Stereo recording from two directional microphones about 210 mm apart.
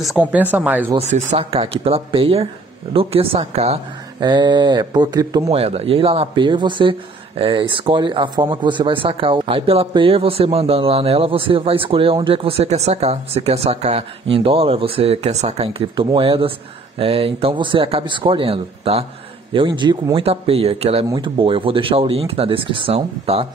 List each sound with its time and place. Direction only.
0.0 s speech: 5° right (ahead or behind)
0.9 s speech: 35° right (ahead or behind)
5.6 s speech: 30° right (ahead or behind)